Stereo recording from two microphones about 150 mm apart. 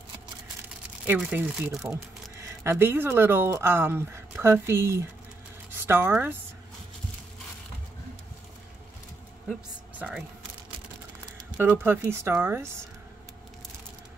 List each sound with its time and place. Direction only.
1.0 s speech: 10° right (ahead or behind)
9.9 s speech: 10° right (ahead or behind)
11.5 s speech: 10° right (ahead or behind)